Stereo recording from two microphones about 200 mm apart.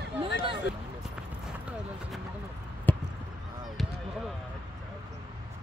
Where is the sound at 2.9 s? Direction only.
10° left (ahead or behind).